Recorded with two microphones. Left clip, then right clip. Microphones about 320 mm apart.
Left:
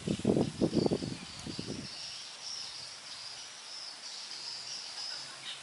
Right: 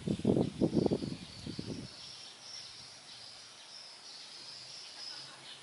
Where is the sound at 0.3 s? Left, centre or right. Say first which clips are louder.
Left 1 dB; right.